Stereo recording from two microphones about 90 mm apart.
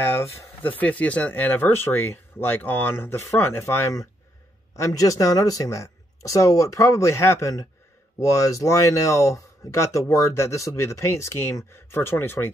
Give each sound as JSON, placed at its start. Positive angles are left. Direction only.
{"t": 0.0, "sound": "speech", "side_deg": 25}
{"t": 0.7, "sound": "speech", "side_deg": 15}